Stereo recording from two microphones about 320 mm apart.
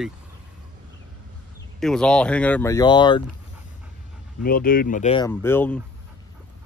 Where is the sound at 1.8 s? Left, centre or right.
Centre.